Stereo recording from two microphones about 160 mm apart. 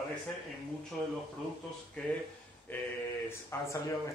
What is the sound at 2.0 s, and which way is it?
Speech, 5° left (ahead or behind).